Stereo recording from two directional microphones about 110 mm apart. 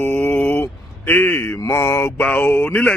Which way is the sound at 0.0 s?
20° left (ahead or behind).